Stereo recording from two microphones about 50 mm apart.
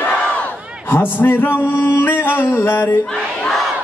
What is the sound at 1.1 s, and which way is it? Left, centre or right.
Male singing, left.